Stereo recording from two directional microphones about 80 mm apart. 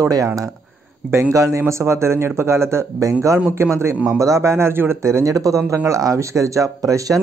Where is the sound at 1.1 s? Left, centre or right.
Right.